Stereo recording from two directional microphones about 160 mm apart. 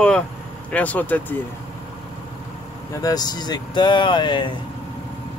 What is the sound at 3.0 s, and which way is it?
Speech, 25° left (ahead or behind).